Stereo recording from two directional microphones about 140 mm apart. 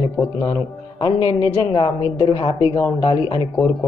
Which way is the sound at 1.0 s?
40° left (ahead or behind).